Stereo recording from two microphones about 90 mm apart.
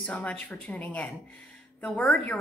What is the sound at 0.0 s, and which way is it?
A woman's voice, 15° left (ahead or behind).